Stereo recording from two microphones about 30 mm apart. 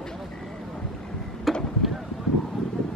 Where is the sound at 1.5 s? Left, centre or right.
Centre.